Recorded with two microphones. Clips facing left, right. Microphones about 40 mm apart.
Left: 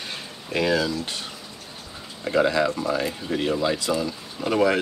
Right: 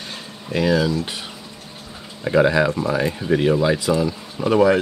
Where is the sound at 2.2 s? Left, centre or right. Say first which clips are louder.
Right 4 dB; centre.